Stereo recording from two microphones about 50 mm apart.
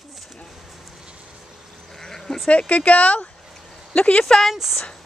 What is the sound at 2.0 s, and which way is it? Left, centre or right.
Bleat, centre.